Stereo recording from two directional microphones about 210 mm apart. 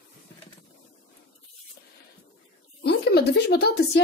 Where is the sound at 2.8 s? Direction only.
50° left (ahead or behind).